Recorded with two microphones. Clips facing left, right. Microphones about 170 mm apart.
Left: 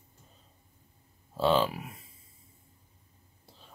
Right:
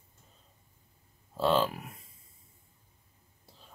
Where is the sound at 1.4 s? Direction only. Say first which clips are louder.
Left 1 dB; centre (ahead or behind).